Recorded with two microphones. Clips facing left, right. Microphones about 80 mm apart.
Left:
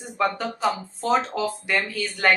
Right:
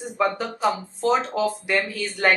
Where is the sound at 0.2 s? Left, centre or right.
Centre.